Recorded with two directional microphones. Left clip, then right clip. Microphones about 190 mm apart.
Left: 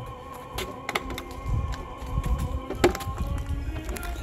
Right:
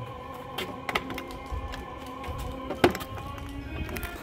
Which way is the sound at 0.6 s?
10° left (ahead or behind).